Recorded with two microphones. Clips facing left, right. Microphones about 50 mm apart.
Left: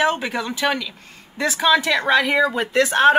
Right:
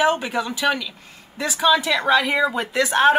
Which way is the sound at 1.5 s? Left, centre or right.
Centre.